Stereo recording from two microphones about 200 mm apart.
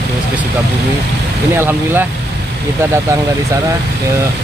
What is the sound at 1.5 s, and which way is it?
Speech, 10° right (ahead or behind).